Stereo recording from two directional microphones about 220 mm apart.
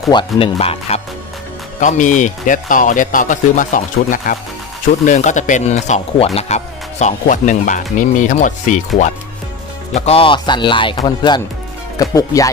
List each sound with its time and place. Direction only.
0.1 s speech: 25° left (ahead or behind)